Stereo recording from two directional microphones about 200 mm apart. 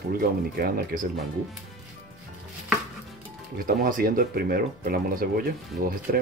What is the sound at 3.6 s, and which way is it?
Speech, 45° right (ahead or behind).